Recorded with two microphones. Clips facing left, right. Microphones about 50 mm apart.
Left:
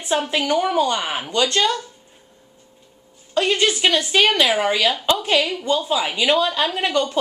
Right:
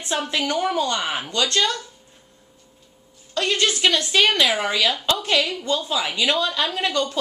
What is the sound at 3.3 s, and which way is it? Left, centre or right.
Speech, centre.